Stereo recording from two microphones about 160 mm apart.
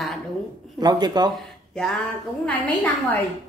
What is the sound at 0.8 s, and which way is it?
Speech, 25° right (ahead or behind).